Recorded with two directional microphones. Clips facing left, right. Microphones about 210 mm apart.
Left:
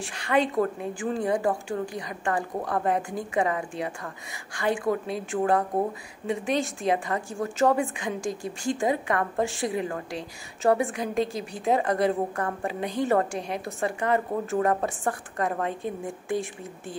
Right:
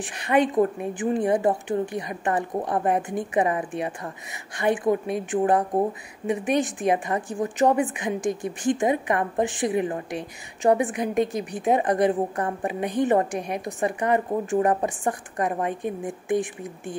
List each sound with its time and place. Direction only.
0.0 s a woman's voice: 20° right (ahead or behind)